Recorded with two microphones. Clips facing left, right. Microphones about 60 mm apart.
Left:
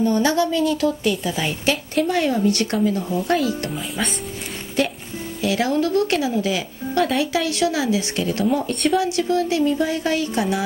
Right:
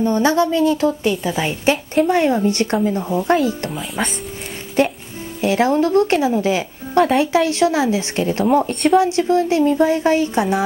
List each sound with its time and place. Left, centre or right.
0.0 s speech: right
3.7 s speech: centre
4.8 s music: right
5.4 s speech: right